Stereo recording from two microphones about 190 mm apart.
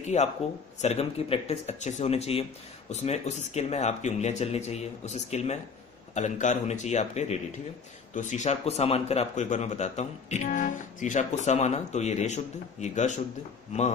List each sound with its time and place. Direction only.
0.0 s speech: 35° left (ahead or behind)